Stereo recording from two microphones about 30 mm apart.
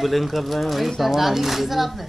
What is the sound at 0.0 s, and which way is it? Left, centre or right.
A man's voice, centre.